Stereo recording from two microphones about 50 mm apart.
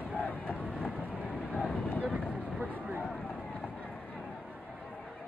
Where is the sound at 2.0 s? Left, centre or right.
Right.